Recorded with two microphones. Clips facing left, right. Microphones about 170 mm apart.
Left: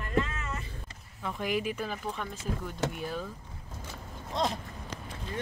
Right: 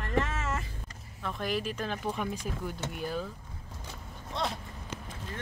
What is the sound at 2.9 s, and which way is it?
Speech, centre (ahead or behind).